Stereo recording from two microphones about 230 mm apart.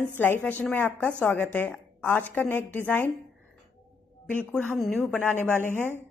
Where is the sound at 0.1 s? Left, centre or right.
Centre.